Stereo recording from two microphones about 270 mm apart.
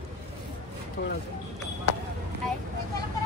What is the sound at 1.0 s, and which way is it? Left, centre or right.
Speech, left.